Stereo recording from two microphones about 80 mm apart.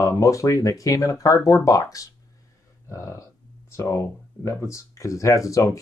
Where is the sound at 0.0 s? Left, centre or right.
Left.